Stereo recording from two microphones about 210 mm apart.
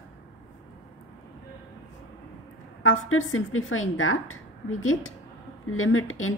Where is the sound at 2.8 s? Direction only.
70° left (ahead or behind).